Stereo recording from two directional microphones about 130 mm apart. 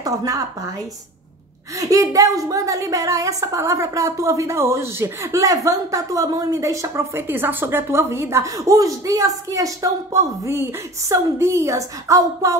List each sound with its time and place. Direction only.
0.0 s a woman's voice: 25° right (ahead or behind)
1.8 s a woman's voice: 25° right (ahead or behind)